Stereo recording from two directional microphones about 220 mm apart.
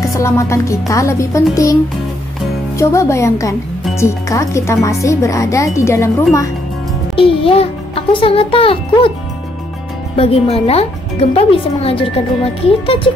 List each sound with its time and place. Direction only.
0.0 s speech: 15° left (ahead or behind)
2.8 s speech: 15° left (ahead or behind)
7.2 s speech: 25° left (ahead or behind)
10.1 s speech: 25° left (ahead or behind)